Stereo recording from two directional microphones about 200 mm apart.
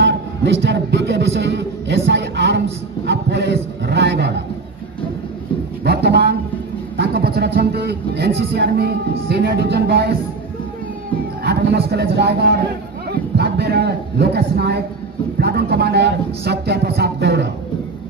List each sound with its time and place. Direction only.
0.0 s a man's voice: 65° right (ahead or behind)
5.9 s a sound: 55° right (ahead or behind)
7.0 s speech: 55° right (ahead or behind)
11.4 s a man's voice: 55° right (ahead or behind)